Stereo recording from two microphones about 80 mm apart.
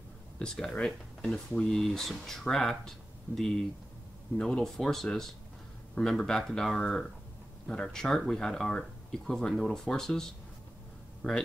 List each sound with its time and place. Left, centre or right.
0.4 s speech: centre
11.2 s speech: centre